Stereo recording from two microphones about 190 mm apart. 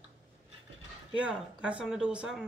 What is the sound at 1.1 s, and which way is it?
Speech, 5° right (ahead or behind).